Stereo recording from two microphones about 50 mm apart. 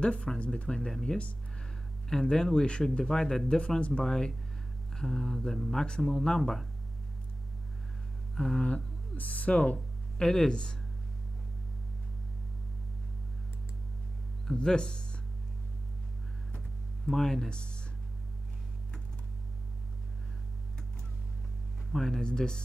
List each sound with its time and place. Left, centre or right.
0.0 s speech: left
0.7 s speech: centre
8.4 s a sound: centre
9.1 s speech: left
10.2 s speech: centre
14.5 s speech: centre
17.0 s speech: centre
21.9 s speech: centre